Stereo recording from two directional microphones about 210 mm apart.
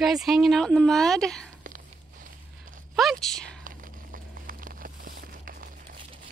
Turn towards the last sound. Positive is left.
turn(degrees=-45)  # may be behind; listen again after turning